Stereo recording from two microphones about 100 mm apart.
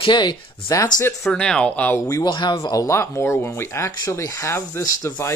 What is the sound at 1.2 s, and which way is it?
Speech, 10° left (ahead or behind).